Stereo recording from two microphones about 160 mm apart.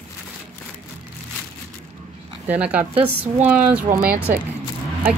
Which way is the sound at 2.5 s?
10° right (ahead or behind).